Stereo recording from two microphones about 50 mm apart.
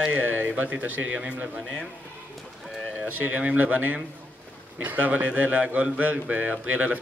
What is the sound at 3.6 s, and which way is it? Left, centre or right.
A man's voice, right.